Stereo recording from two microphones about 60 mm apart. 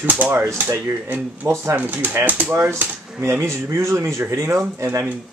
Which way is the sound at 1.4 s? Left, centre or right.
Right.